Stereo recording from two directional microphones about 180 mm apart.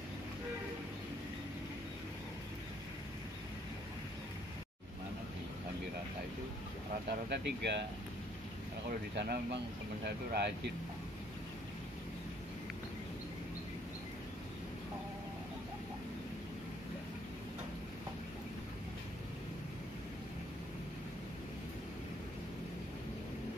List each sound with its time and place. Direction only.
7.1 s speech: 70° right (ahead or behind)
9.1 s speech: 70° right (ahead or behind)